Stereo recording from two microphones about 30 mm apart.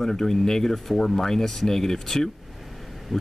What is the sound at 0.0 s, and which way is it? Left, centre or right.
Speech, centre.